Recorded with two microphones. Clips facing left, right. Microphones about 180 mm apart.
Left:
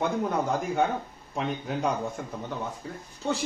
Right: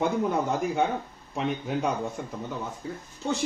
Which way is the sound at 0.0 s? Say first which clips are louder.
Right 1 dB; 5° right (ahead or behind).